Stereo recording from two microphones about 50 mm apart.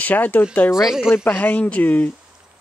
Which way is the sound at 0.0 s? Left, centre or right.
Left.